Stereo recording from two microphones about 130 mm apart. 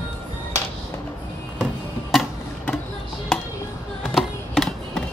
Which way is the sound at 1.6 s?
Centre (ahead or behind).